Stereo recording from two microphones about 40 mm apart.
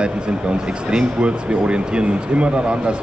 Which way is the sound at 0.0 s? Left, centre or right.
Right.